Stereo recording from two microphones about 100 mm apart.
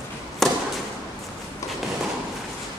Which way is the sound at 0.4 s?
5° left (ahead or behind).